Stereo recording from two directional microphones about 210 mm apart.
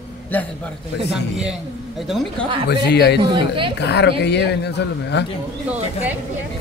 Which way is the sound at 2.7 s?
55° left (ahead or behind).